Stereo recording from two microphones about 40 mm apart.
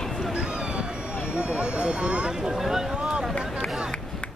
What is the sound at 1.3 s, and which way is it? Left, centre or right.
Vehicle, right.